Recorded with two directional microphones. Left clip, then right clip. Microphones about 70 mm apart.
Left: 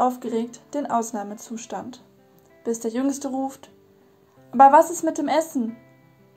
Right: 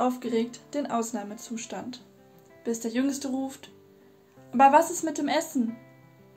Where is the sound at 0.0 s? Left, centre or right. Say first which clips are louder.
Left 4 dB; left.